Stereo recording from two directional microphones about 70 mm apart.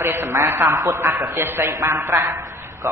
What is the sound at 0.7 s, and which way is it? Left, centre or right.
Speech, right.